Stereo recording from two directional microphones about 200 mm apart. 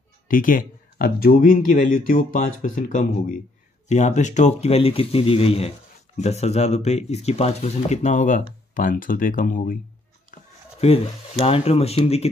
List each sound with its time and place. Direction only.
0.3 s speech: 45° left (ahead or behind)
11.4 s speech: 30° left (ahead or behind)